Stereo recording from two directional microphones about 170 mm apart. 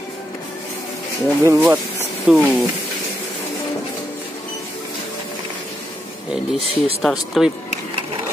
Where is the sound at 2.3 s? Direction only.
Centre (ahead or behind).